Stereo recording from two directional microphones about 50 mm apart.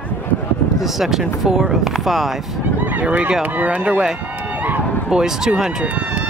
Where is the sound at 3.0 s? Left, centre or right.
Right.